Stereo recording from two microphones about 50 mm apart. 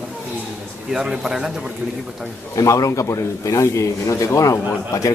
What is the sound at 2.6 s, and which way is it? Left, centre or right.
A man's voice, left.